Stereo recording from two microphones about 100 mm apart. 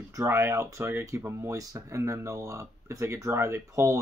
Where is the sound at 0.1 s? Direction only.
30° right (ahead or behind).